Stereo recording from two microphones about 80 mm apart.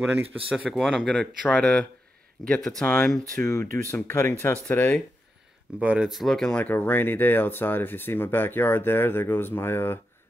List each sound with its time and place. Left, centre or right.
0.0 s speech: right
0.7 s speech: centre
3.4 s speech: left
5.8 s speech: centre
6.6 s speech: left